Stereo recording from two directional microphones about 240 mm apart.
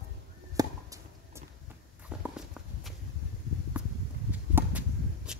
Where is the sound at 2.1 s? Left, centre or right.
Centre.